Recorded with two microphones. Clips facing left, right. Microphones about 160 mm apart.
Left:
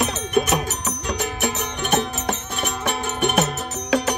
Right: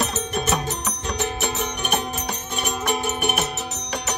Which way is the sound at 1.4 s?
20° right (ahead or behind).